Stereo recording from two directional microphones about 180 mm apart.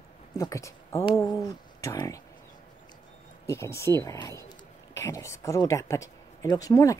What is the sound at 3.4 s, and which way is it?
Speech, 15° left (ahead or behind).